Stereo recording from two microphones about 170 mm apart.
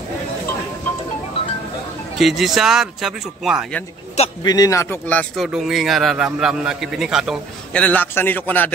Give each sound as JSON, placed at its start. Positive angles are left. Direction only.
{"t": 2.1, "sound": "a man's voice", "side_deg": 0}
{"t": 4.4, "sound": "a man's voice", "side_deg": 20}
{"t": 5.3, "sound": "a man's voice", "side_deg": 0}
{"t": 7.8, "sound": "a man's voice", "side_deg": 10}